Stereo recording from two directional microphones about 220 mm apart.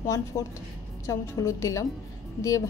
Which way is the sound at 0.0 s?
15° left (ahead or behind).